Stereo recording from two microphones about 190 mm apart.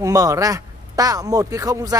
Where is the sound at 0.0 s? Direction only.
20° right (ahead or behind).